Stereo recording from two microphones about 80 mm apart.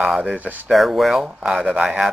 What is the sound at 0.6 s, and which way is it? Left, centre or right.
A man's voice, centre.